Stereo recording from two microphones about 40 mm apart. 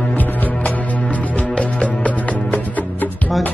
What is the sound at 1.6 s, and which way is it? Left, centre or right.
Music, left.